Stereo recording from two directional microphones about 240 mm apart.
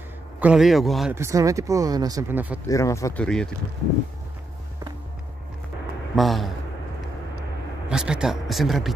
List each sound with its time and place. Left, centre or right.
0.4 s a man's voice: centre
1.1 s speech: centre
2.7 s speech: centre
6.1 s a man's voice: centre
7.9 s speech: centre